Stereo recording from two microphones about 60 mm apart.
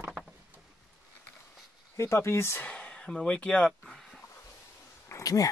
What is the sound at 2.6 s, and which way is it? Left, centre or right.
Speech, left.